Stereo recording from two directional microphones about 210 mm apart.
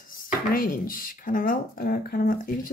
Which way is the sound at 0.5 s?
40° left (ahead or behind).